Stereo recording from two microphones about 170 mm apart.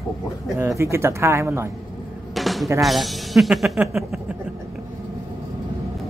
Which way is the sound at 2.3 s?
Centre (ahead or behind).